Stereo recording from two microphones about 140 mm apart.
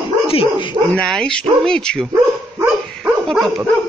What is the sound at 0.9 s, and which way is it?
Speech, 5° left (ahead or behind).